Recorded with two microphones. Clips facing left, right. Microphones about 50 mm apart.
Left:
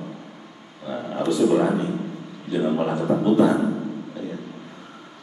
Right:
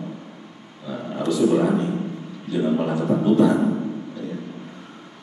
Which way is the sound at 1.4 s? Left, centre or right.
Centre.